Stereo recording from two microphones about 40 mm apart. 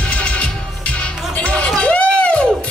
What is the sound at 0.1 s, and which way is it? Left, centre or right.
Music, left.